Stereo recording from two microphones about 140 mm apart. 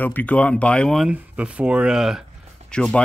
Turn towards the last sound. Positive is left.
turn(degrees=5)  # may be behind; listen again after turning